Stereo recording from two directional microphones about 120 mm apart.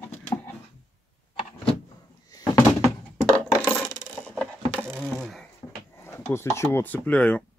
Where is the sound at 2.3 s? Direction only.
35° left (ahead or behind).